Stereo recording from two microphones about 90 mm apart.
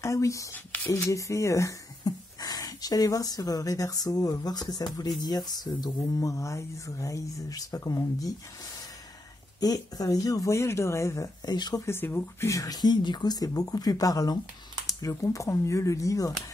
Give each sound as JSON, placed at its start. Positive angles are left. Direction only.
{"t": 0.0, "sound": "speech", "side_deg": 35}
{"t": 0.7, "sound": "a sound", "side_deg": 20}
{"t": 0.9, "sound": "speech", "side_deg": 35}
{"t": 2.0, "sound": "speech", "side_deg": 45}
{"t": 9.6, "sound": "speech", "side_deg": 45}
{"t": 11.4, "sound": "speech", "side_deg": 50}
{"t": 11.8, "sound": "speech", "side_deg": 25}
{"t": 12.4, "sound": "speech", "side_deg": 40}